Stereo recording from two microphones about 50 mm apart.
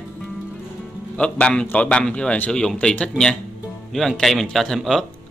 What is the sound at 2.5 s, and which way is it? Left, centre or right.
Speech, centre.